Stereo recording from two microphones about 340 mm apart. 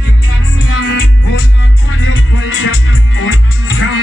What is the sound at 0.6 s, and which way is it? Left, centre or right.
Music, left.